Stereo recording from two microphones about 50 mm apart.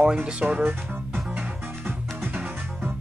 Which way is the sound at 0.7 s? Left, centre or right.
Right.